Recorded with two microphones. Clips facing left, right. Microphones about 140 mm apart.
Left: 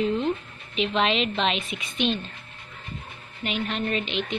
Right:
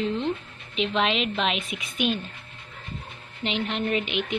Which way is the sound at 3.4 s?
20° right (ahead or behind).